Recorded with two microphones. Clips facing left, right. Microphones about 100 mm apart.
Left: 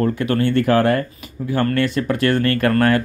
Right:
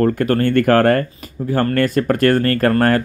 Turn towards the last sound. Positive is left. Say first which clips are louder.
# right 1 dB
turn(degrees=-40)  # may be behind; listen again after turning